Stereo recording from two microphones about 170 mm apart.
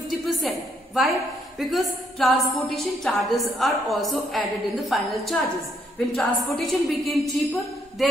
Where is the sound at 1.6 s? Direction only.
Centre (ahead or behind).